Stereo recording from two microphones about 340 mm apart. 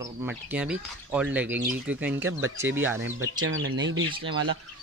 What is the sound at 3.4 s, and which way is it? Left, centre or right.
Speech, right.